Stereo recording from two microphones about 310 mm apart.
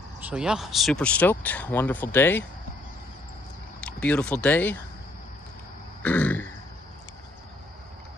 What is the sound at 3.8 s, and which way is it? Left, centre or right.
Speech, centre.